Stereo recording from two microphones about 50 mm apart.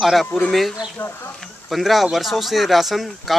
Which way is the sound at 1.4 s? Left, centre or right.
Centre.